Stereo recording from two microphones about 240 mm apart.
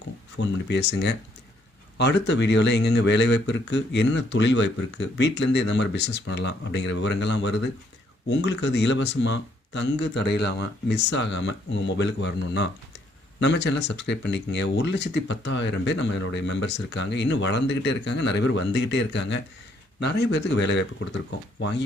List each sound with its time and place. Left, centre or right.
0.4 s speech: left